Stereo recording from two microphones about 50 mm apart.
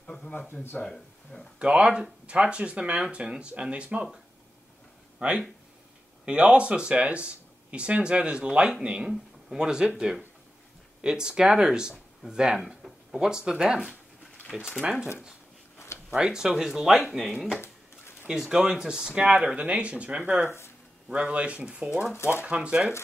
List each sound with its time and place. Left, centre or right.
0.0 s a sound: centre
0.3 s speech: left
1.6 s speech: right
5.2 s speech: right
12.6 s speech: centre
14.4 s a sound: left
14.8 s speech: centre
16.1 s speech: centre
18.3 s speech: centre; by 20.5 s right
21.1 s speech: right
22.1 s speech: left
22.4 s speech: right